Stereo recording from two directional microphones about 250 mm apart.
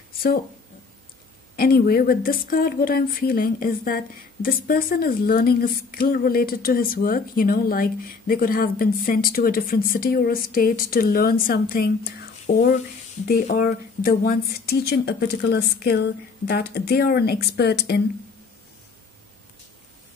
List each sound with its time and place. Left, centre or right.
1.6 s speech: left